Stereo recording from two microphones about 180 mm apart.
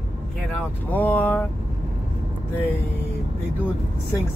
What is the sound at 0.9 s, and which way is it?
Speech, 10° left (ahead or behind).